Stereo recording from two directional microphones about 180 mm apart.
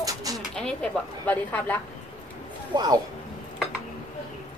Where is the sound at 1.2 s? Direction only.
10° left (ahead or behind).